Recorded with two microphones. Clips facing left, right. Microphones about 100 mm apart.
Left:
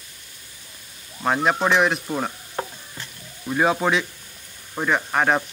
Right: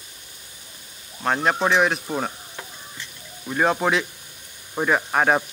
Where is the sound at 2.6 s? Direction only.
45° left (ahead or behind).